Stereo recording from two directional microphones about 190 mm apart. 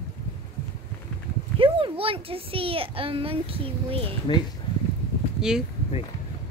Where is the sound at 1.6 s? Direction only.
30° right (ahead or behind).